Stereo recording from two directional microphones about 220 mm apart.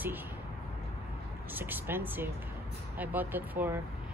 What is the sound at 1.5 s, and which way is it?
Speech, 10° right (ahead or behind).